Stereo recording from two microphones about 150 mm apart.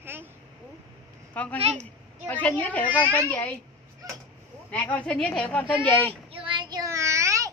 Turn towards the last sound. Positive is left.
turn(degrees=-20)  # may be behind; listen again after turning